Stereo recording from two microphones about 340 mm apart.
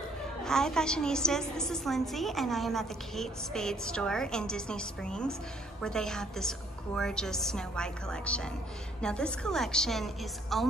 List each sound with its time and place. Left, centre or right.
0.5 s a woman's voice: centre